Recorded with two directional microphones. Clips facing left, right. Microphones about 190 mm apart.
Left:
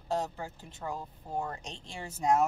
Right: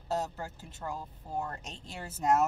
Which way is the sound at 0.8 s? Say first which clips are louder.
Left 1 dB; 5° left (ahead or behind).